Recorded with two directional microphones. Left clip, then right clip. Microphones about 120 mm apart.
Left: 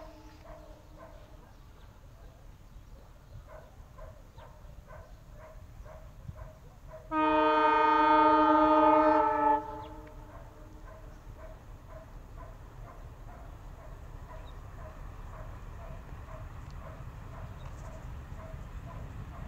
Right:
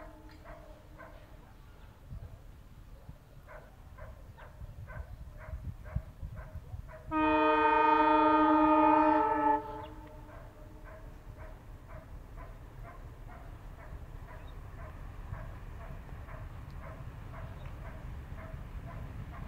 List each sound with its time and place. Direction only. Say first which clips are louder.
7.1 s train: left 1 dB; centre (ahead or behind)
9.4 s train: left 2 dB; 20° right (ahead or behind)